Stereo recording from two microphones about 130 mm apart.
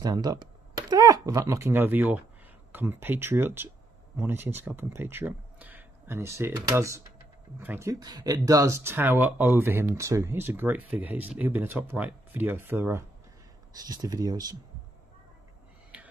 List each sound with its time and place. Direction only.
0.0 s speech: 30° right (ahead or behind)
7.9 s speech: 30° right (ahead or behind)
13.7 s speech: 30° right (ahead or behind)